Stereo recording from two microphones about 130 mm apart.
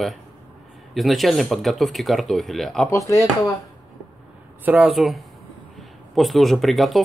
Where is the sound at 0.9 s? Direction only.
Centre (ahead or behind).